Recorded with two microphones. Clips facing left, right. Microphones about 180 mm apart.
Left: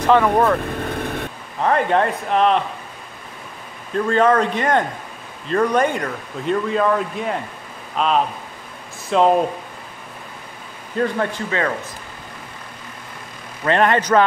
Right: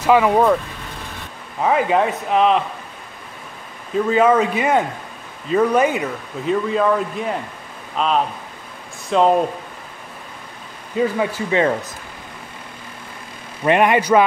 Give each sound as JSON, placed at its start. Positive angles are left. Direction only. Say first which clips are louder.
{"t": 0.0, "sound": "speech", "louder": "right 1 dB", "side_deg": -10}
{"t": 0.7, "sound": "vehicle", "louder": "left 9 dB", "side_deg": 55}
{"t": 1.6, "sound": "speech", "louder": "right 1 dB", "side_deg": -5}
{"t": 3.9, "sound": "speech", "louder": "right 1 dB", "side_deg": -5}
{"t": 11.0, "sound": "speech", "louder": "right 2 dB", "side_deg": -5}
{"t": 13.7, "sound": "speech", "louder": "right 2 dB", "side_deg": -10}